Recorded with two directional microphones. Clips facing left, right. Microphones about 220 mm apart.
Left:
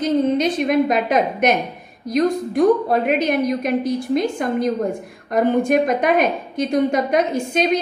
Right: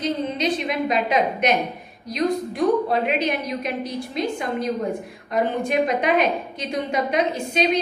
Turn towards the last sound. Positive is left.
turn(degrees=50)  # may be behind; listen again after turning